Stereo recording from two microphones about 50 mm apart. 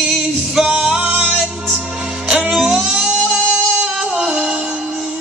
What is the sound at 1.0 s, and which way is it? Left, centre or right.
Music, right.